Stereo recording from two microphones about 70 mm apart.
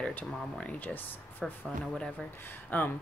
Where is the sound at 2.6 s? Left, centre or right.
Left.